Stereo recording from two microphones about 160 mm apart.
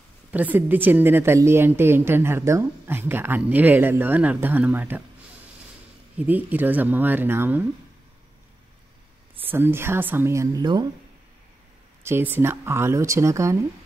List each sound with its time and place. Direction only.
0.3 s a woman's voice: 10° right (ahead or behind)
6.2 s a woman's voice: 10° right (ahead or behind)
9.5 s a woman's voice: 15° right (ahead or behind)
12.0 s a woman's voice: 15° right (ahead or behind)